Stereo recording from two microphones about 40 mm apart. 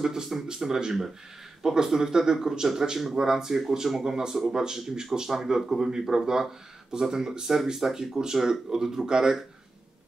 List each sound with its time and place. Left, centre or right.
0.0 s speech: centre